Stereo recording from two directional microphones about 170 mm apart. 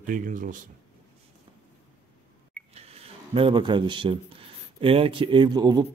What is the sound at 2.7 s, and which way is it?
Speech, 35° right (ahead or behind).